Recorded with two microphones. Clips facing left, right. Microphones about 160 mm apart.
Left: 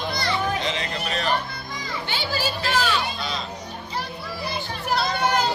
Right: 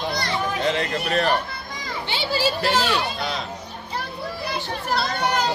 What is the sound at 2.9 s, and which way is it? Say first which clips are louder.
Speech: right 2 dB; 65° right (ahead or behind).